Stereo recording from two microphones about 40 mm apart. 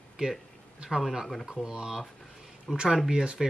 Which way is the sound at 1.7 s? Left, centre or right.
Centre.